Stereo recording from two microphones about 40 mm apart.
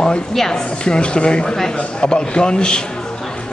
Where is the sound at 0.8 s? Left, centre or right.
Left.